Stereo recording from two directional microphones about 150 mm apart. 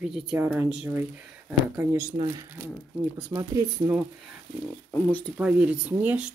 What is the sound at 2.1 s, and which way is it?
Speech, 35° right (ahead or behind).